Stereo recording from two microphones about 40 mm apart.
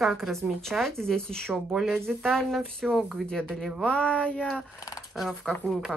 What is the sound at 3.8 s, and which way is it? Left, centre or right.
Speech, left.